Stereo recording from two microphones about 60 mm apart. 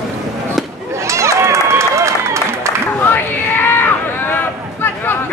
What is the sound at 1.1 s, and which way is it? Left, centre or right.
Run, right.